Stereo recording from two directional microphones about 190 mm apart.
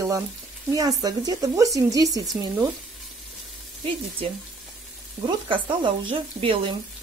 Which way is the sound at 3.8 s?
30° right (ahead or behind).